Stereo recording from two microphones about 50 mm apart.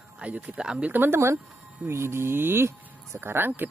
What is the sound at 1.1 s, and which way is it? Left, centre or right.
Speech, right.